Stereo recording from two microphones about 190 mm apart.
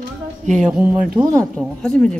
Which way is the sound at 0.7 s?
5° right (ahead or behind).